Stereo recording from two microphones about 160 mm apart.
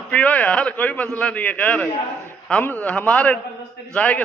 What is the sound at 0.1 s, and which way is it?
A man's voice, 10° left (ahead or behind).